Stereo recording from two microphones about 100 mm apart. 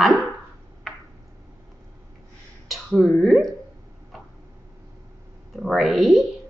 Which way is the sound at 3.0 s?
Centre (ahead or behind).